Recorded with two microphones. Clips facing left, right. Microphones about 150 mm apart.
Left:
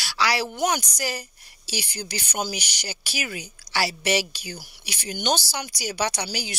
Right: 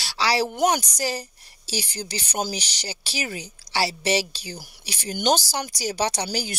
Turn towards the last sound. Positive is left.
turn(degrees=-40)  # may be behind; listen again after turning